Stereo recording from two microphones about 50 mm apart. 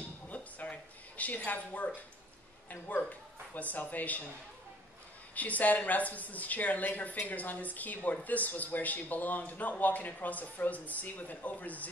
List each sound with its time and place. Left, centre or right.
0.3 s a sound: left
2.7 s speech: left
5.3 s speech: left